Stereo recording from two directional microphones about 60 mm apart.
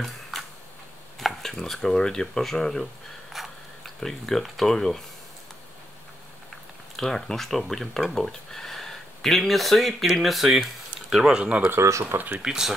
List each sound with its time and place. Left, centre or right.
0.0 s a sound: centre
1.2 s speech: centre
7.0 s speech: centre
11.3 s speech: right
11.8 s speech: right
12.4 s speech: centre